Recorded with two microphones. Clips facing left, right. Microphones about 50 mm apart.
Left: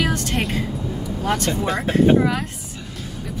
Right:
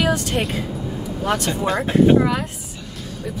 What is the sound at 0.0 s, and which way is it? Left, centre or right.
Vehicle, centre.